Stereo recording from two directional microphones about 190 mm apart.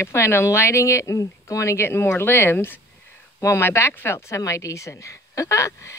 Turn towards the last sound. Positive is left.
turn(degrees=15)  # may be behind; listen again after turning